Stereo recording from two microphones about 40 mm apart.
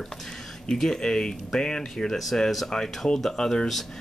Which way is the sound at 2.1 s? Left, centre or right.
Centre.